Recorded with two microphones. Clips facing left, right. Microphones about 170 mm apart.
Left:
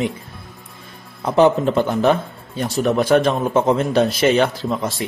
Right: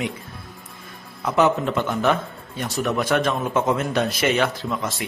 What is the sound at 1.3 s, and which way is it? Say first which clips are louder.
A man's voice: left 5 dB; 30° left (ahead or behind).